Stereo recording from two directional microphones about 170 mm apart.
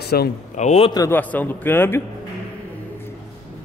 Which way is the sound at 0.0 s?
75° left (ahead or behind).